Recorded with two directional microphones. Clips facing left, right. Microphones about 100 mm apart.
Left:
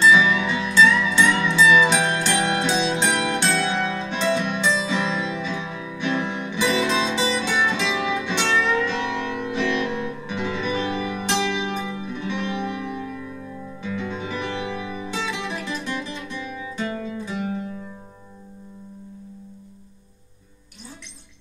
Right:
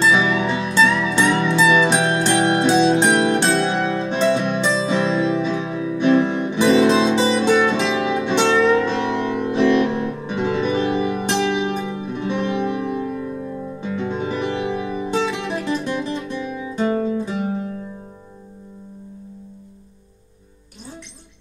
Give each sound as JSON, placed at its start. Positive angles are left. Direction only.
{"t": 0.0, "sound": "music", "side_deg": -40}
{"t": 16.9, "sound": "guitar", "side_deg": -40}